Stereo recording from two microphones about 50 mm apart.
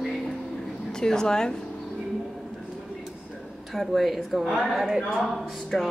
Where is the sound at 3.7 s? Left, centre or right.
Centre.